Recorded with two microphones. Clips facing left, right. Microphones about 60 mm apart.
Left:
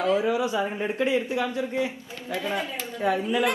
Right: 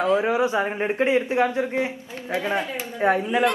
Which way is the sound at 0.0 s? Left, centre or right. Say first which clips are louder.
Right 3 dB; right.